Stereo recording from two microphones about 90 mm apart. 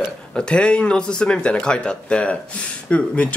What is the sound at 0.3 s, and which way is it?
Speech, 10° left (ahead or behind).